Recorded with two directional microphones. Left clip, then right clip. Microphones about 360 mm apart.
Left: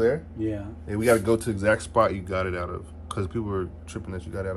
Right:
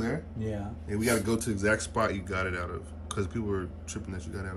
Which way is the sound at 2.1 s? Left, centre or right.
Left.